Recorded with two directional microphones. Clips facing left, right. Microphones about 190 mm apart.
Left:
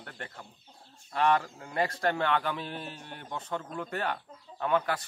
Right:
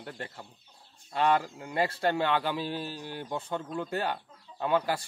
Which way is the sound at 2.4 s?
30° right (ahead or behind).